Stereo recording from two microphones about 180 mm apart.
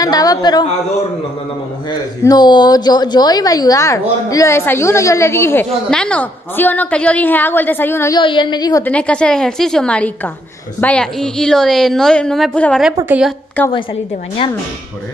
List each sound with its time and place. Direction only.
0.0 s a woman's voice: 20° left (ahead or behind)
1.9 s a woman's voice: 25° left (ahead or behind)
8.2 s a woman's voice: 25° left (ahead or behind)
8.8 s a woman's voice: 5° left (ahead or behind)